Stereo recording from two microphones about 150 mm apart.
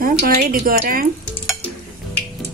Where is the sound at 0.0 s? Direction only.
85° right; by 1.0 s 70° right (ahead or behind).